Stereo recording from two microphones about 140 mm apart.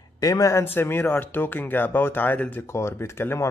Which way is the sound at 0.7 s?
15° left (ahead or behind).